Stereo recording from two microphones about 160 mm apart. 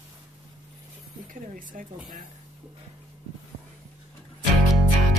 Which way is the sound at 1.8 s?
55° right (ahead or behind).